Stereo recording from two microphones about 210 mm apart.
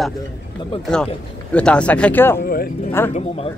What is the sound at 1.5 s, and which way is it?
Speech, 5° left (ahead or behind).